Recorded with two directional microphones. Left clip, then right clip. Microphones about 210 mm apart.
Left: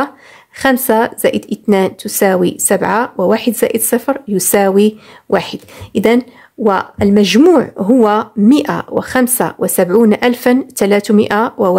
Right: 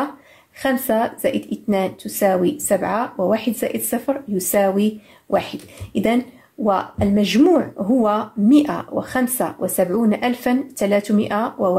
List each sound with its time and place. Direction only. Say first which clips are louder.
0.6 s speech: left 7 dB; 45° left (ahead or behind)